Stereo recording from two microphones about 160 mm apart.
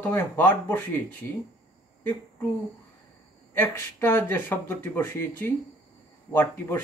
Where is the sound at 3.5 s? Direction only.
15° left (ahead or behind).